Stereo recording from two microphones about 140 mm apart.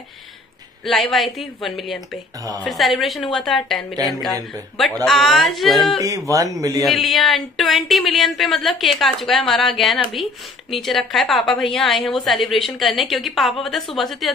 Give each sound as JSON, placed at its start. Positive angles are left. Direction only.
{"t": 0.8, "sound": "a woman's voice", "side_deg": 0}
{"t": 6.0, "sound": "speech", "side_deg": -25}
{"t": 6.8, "sound": "a woman's voice", "side_deg": 0}
{"t": 10.7, "sound": "a woman's voice", "side_deg": 0}